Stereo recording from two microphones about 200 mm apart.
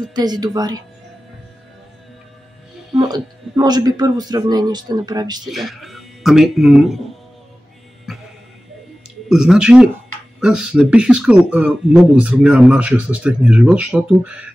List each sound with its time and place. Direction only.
0.1 s speech: 20° right (ahead or behind)
3.0 s speech: 20° right (ahead or behind)
5.5 s speech: centre (ahead or behind)
9.3 s speech: 5° right (ahead or behind)